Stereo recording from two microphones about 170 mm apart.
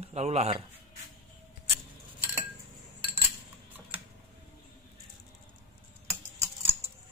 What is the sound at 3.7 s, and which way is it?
Typing, 10° right (ahead or behind).